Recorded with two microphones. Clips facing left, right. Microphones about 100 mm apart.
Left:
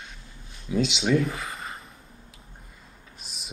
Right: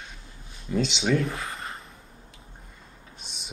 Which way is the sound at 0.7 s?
Centre (ahead or behind).